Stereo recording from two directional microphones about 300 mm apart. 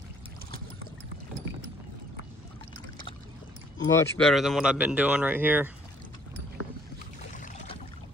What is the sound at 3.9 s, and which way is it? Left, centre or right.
Speech, centre.